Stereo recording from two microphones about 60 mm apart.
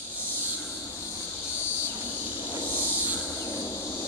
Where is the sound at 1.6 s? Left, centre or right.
Left.